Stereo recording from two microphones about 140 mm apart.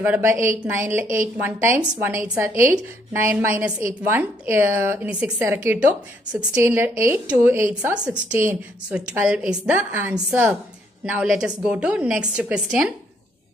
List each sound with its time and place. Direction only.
0.0 s speech: 15° right (ahead or behind)